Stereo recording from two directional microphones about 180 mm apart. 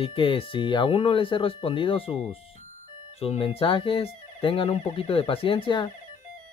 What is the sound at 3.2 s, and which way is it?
Speech, 35° left (ahead or behind).